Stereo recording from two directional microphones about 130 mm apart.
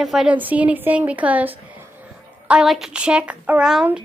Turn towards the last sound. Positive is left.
turn(degrees=-5)  # may be behind; listen again after turning